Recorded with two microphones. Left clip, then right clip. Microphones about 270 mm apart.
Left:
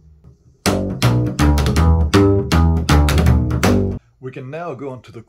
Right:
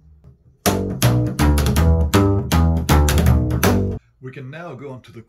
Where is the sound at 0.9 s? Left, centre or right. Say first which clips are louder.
Left 1 dB; centre.